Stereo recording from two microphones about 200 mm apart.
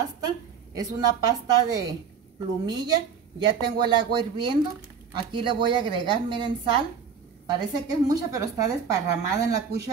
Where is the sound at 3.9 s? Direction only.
25° right (ahead or behind).